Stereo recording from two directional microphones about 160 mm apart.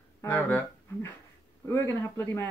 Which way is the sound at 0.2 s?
10° left (ahead or behind).